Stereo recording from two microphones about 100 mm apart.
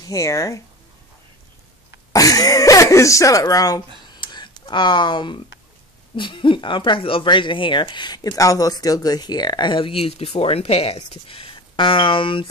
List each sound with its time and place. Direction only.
0.1 s speech: 35° left (ahead or behind)
2.1 s speech: 35° left (ahead or behind)
4.2 s a sound: 45° left (ahead or behind)
6.1 s speech: 55° left (ahead or behind)